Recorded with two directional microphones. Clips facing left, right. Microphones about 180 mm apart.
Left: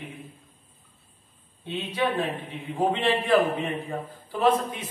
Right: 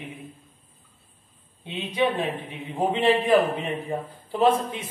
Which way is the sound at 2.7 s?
20° right (ahead or behind).